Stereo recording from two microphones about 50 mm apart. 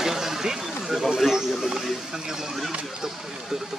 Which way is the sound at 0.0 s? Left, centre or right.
Centre.